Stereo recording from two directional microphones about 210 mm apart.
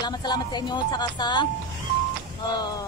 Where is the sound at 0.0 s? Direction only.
20° left (ahead or behind).